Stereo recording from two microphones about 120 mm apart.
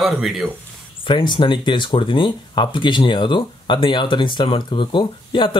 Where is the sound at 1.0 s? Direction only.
45° left (ahead or behind).